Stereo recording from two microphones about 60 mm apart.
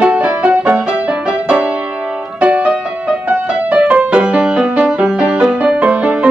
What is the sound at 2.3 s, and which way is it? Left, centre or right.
Music, right.